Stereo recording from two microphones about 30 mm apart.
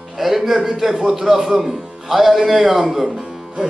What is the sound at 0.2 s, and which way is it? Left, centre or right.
A man's voice, centre.